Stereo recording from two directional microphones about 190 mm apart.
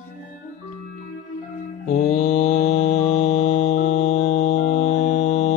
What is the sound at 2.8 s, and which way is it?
Music, 35° left (ahead or behind).